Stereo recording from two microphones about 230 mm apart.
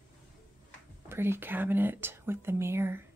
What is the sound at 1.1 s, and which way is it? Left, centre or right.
Speech, centre.